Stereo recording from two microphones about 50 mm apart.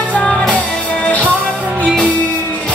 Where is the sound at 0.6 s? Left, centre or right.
Left.